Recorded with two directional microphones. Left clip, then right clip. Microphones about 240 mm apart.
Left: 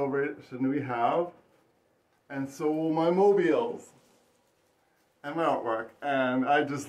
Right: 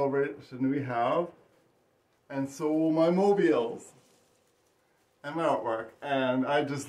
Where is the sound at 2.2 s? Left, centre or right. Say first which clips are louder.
Left 1 dB; centre.